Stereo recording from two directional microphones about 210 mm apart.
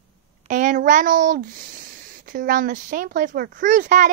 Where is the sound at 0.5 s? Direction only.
40° right (ahead or behind).